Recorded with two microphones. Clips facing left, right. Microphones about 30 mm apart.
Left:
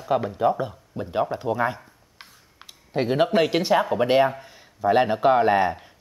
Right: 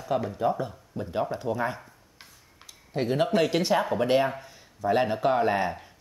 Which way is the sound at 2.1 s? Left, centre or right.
Left.